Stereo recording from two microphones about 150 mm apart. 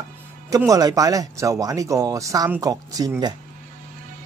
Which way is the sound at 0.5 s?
25° right (ahead or behind).